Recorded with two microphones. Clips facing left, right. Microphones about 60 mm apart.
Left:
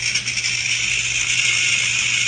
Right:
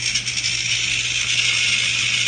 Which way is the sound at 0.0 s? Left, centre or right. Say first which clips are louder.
Left 2 dB; left.